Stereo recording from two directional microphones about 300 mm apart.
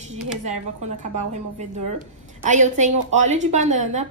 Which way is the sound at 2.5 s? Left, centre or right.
Right.